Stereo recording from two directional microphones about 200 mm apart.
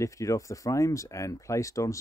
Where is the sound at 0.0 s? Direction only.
15° left (ahead or behind).